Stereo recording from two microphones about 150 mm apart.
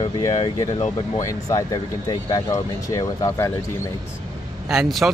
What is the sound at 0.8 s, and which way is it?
Speech, 45° left (ahead or behind).